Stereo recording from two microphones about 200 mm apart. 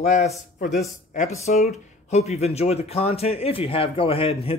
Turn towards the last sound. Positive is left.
turn(degrees=30)  # may be behind; listen again after turning